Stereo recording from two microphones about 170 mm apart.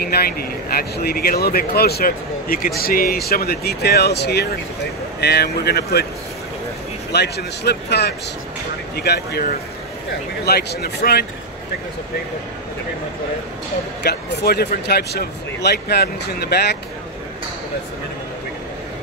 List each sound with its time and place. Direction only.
0.0 s speech: 65° left (ahead or behind)
7.1 s speech: 75° left (ahead or behind)
14.0 s speech: 70° left (ahead or behind)